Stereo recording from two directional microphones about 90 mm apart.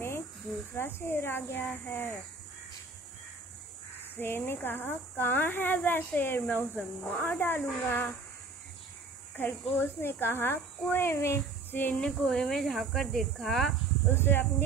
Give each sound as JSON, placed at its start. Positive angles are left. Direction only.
{"t": 0.7, "sound": "speech", "side_deg": 25}
{"t": 4.2, "sound": "speech", "side_deg": 25}
{"t": 9.4, "sound": "speech", "side_deg": 20}
{"t": 14.1, "sound": "speech", "side_deg": 25}